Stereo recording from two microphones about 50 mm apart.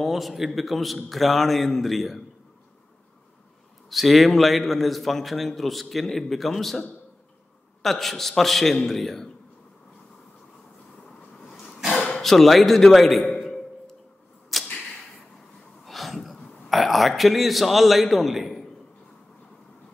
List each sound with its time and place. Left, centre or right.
0.0 s a man's voice: centre
3.9 s a man's voice: centre
7.8 s a man's voice: centre
12.0 s a sound: centre
14.5 s arrow: centre
15.8 s a sound: centre
16.6 s a man's voice: centre